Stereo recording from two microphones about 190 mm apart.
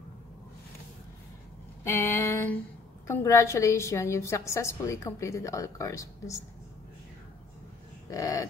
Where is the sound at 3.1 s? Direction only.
15° left (ahead or behind).